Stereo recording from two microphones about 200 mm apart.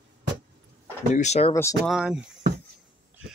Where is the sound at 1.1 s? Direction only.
35° left (ahead or behind).